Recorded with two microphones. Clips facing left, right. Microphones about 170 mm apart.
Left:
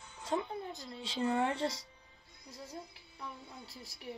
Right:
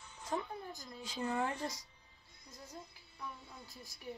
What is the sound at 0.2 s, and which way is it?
Speech, 25° left (ahead or behind).